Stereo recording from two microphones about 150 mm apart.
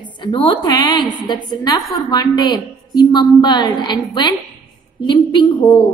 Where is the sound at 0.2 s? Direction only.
35° left (ahead or behind).